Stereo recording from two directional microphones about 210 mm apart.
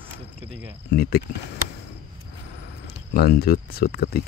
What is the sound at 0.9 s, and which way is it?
Speech, 50° left (ahead or behind).